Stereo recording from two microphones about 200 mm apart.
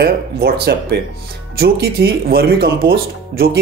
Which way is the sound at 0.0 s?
55° right (ahead or behind).